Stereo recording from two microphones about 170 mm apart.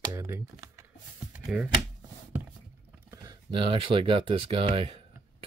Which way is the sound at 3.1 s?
25° right (ahead or behind).